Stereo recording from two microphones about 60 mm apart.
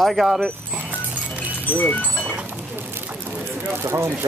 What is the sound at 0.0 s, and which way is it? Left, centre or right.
Speech, centre.